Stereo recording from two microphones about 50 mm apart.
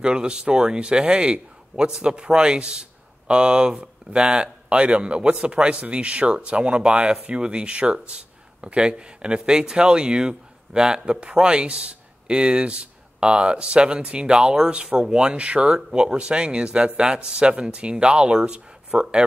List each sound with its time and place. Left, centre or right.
0.0 s speech: centre